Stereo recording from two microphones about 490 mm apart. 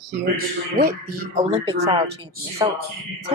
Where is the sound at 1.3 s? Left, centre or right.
Centre.